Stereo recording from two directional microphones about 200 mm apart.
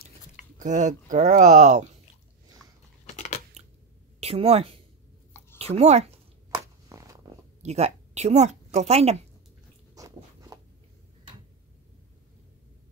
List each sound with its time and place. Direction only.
0.6 s speech: 40° right (ahead or behind)
2.6 s biting: centre (ahead or behind)
3.1 s biting: 35° left (ahead or behind)
3.6 s a sound: 30° right (ahead or behind)
4.2 s a woman's voice: 30° right (ahead or behind)
6.6 s a sound: 15° right (ahead or behind)
7.6 s a woman's voice: 35° right (ahead or behind)
9.9 s biting: 15° right (ahead or behind)